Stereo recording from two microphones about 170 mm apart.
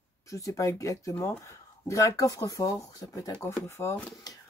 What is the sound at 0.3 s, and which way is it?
Speech, 20° left (ahead or behind).